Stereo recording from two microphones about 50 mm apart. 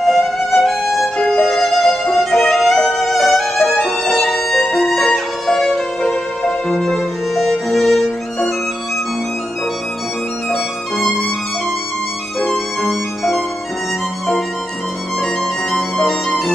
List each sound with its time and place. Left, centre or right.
0.0 s violin: centre
3.7 s violin: centre
7.3 s music: centre
12.4 s violin: centre
15.7 s music: centre